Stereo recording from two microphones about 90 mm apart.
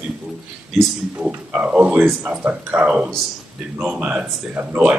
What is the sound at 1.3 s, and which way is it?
Speech, 15° right (ahead or behind).